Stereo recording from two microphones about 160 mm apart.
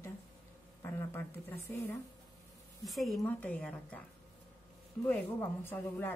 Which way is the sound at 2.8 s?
Centre (ahead or behind).